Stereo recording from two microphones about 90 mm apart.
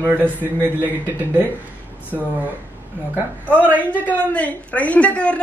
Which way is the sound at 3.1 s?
20° right (ahead or behind).